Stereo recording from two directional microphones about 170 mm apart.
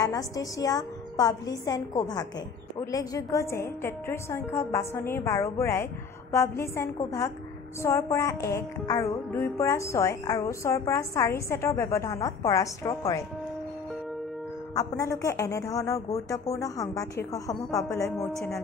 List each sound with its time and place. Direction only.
0.0 s a woman's voice: 20° left (ahead or behind)
2.8 s music: 20° left (ahead or behind)
15.0 s a woman's voice: 20° left (ahead or behind)
18.0 s speech: centre (ahead or behind)